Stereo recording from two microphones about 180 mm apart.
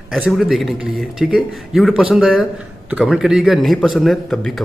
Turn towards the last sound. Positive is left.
turn(degrees=0)  # may be behind; listen again after turning